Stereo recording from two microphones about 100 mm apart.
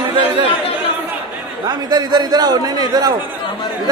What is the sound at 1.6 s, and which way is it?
A man's voice, 45° right (ahead or behind).